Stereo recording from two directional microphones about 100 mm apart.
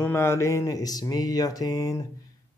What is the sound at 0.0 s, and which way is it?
A man's voice, 25° left (ahead or behind).